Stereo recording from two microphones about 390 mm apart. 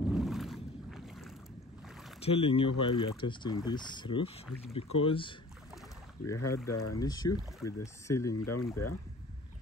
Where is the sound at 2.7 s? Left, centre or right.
Left.